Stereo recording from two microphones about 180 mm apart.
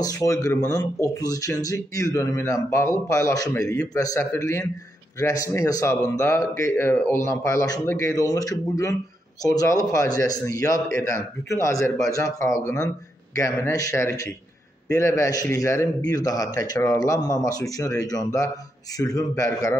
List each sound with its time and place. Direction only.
0.0 s speech: 20° left (ahead or behind)